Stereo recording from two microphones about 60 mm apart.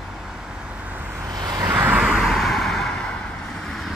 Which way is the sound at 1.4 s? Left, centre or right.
Right.